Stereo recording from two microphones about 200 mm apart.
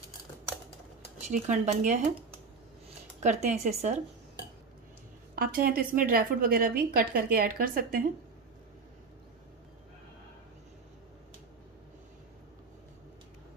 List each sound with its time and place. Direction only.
1.2 s speech: 35° right (ahead or behind)
3.2 s speech: 35° right (ahead or behind)
5.3 s a woman's voice: 45° right (ahead or behind)